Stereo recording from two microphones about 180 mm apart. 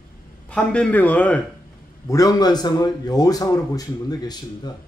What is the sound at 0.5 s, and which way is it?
Speech, 5° left (ahead or behind).